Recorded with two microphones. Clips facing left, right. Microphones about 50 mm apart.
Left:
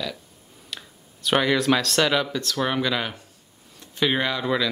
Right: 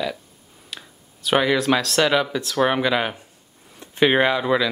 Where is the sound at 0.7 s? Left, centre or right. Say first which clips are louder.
Even; centre.